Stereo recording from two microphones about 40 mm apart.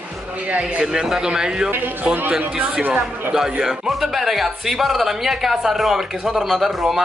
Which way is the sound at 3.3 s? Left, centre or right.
Centre.